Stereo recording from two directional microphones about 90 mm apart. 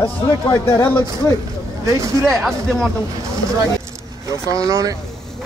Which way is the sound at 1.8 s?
35° right (ahead or behind).